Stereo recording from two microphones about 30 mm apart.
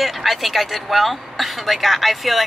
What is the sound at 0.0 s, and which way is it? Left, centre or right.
Speech, centre.